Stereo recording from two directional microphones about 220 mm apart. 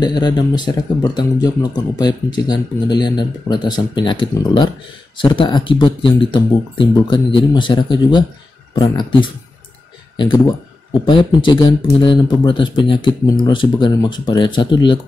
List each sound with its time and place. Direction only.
0.0 s speech: 20° left (ahead or behind)